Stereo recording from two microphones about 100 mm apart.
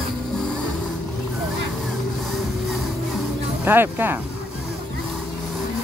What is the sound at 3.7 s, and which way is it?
Speech, 20° right (ahead or behind).